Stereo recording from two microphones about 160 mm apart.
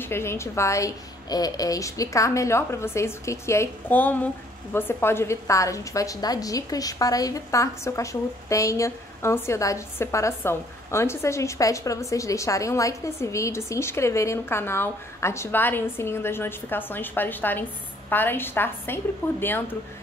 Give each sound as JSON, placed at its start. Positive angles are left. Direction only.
{"t": 0.0, "sound": "a woman's voice", "side_deg": 15}